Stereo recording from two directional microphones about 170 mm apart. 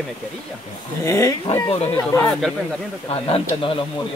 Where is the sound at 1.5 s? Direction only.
35° left (ahead or behind).